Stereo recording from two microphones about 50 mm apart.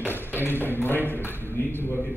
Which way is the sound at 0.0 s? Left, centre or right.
Left.